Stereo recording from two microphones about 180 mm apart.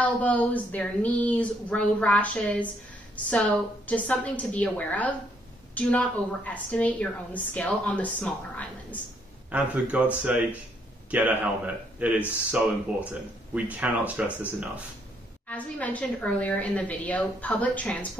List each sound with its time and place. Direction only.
0.0 s a woman's voice: 10° left (ahead or behind)
9.5 s speech: 10° right (ahead or behind)
15.4 s a woman's voice: 10° left (ahead or behind)